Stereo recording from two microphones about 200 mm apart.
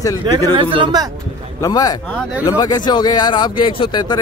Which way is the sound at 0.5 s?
25° right (ahead or behind).